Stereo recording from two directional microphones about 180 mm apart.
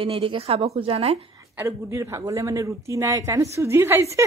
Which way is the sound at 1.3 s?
15° right (ahead or behind).